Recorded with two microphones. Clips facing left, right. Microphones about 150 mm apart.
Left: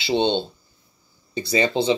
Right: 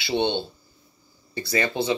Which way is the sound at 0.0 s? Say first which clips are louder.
Left 3 dB; 20° left (ahead or behind).